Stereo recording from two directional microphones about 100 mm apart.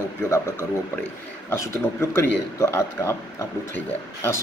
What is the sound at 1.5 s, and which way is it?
A man's voice, 25° left (ahead or behind).